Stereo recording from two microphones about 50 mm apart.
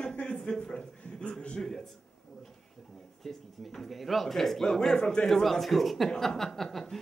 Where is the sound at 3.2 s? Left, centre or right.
Centre.